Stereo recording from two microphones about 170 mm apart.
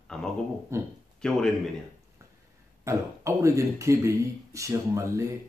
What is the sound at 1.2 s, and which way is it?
Speech, 5° left (ahead or behind).